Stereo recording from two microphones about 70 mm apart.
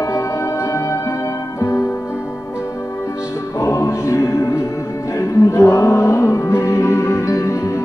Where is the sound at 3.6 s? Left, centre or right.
Left.